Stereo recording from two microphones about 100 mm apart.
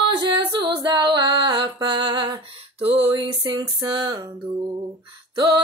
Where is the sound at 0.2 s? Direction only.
50° right (ahead or behind).